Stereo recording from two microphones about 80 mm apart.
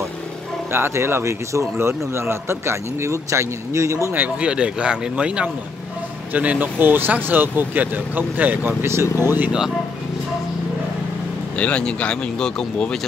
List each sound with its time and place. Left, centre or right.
0.7 s speech: right
4.1 s speech: centre
8.8 s speech: right
11.5 s speech: centre